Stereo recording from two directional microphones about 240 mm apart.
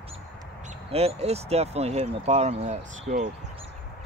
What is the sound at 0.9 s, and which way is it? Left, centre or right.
Speech, right.